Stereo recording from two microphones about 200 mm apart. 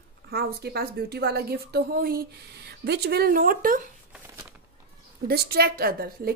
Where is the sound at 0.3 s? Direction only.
55° right (ahead or behind).